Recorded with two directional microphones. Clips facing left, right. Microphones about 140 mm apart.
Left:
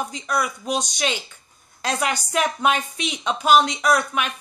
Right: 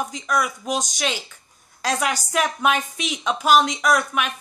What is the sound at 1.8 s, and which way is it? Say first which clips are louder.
Speech: right 1 dB; centre (ahead or behind).